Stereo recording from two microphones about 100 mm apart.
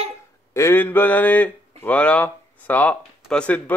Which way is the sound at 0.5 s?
25° left (ahead or behind).